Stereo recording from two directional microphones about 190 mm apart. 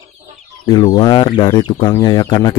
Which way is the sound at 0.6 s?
20° left (ahead or behind).